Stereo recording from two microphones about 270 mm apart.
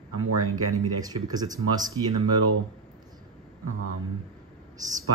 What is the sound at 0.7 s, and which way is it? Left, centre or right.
Speech, centre.